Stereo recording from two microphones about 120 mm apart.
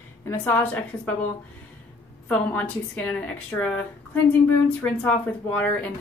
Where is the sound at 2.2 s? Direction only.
15° left (ahead or behind).